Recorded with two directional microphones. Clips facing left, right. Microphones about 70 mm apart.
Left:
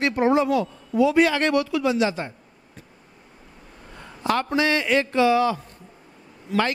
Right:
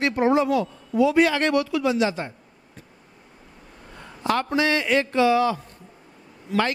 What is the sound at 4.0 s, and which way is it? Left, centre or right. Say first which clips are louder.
A man's voice: even; left.